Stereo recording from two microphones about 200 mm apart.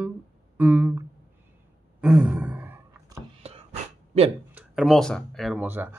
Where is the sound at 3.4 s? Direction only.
30° right (ahead or behind).